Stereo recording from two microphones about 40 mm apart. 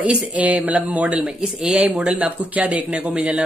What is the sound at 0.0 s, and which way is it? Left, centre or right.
Speech, right.